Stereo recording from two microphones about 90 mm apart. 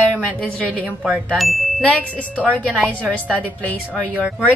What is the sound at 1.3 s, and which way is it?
Speech, centre (ahead or behind).